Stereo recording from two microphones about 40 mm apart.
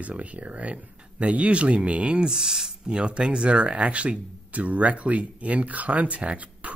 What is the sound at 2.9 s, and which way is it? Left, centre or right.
Speech, right.